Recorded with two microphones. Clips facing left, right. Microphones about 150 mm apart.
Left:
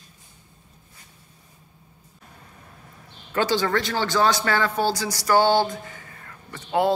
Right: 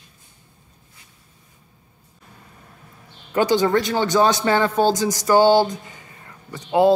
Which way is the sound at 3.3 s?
20° right (ahead or behind).